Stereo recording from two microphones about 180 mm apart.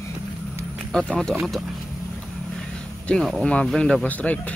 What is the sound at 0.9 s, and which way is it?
Speech, 5° left (ahead or behind).